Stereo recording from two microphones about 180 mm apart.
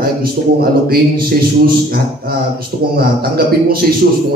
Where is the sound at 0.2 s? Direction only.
55° right (ahead or behind).